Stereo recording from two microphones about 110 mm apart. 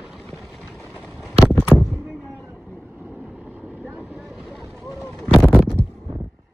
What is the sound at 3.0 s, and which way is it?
Vehicle, 15° right (ahead or behind).